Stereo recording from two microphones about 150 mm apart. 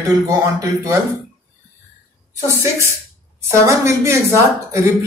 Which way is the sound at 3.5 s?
20° right (ahead or behind).